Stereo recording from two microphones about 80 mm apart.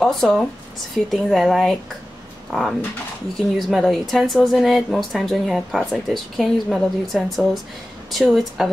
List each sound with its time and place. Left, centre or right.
0.0 s a woman's voice: centre